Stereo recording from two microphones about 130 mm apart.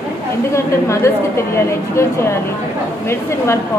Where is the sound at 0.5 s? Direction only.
20° left (ahead or behind).